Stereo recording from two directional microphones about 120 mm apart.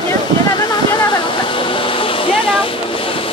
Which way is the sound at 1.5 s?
45° left (ahead or behind).